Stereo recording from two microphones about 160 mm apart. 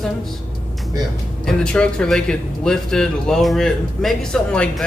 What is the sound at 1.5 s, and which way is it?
A man's voice, 5° left (ahead or behind).